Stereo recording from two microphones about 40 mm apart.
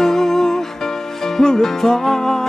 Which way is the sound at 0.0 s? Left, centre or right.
Centre.